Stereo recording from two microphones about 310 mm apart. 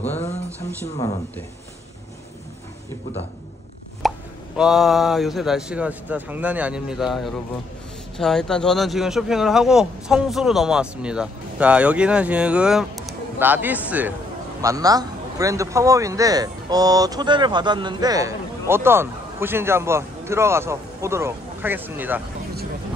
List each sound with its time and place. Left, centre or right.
4.0 s plop: centre
4.6 s a man's voice: centre